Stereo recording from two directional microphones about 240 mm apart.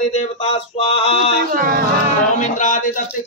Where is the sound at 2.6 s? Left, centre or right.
Left.